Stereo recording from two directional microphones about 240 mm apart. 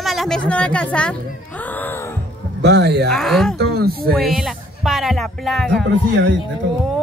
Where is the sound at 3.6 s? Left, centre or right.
Right.